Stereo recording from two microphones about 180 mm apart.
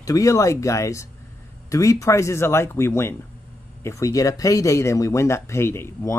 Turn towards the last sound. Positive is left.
turn(degrees=15)  # may be behind; listen again after turning